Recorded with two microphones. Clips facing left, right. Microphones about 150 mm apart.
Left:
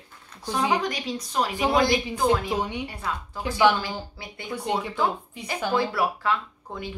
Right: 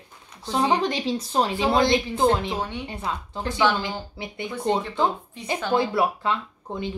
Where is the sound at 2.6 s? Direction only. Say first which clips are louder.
Left 1 dB; 15° left (ahead or behind).